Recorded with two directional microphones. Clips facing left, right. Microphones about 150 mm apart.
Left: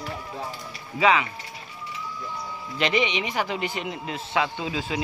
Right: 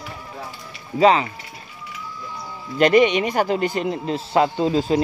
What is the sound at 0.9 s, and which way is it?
Speech, 35° right (ahead or behind).